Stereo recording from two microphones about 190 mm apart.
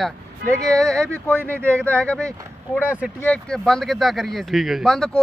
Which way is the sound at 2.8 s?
5° right (ahead or behind).